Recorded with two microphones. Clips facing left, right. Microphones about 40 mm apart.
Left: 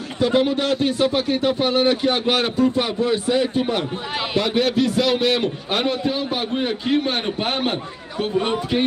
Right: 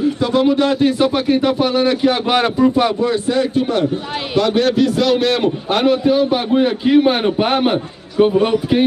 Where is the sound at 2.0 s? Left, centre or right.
Centre.